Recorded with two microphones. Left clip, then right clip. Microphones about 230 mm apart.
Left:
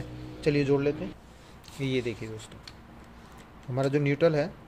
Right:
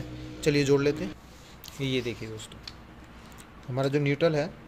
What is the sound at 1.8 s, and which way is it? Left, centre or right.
Speech, centre.